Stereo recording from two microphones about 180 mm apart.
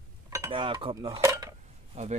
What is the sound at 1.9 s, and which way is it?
Speech, 40° right (ahead or behind).